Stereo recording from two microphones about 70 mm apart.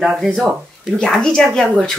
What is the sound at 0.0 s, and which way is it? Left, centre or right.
Speech, centre.